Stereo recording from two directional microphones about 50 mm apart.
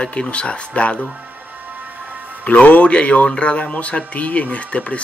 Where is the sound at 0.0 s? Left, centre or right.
Left.